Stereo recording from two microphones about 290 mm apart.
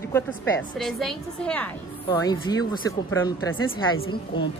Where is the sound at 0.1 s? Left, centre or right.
Centre.